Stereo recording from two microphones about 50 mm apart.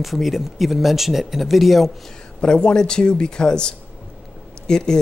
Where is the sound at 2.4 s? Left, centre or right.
Centre.